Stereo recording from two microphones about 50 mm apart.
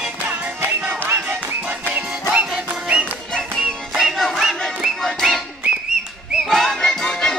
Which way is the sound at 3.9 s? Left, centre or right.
Centre.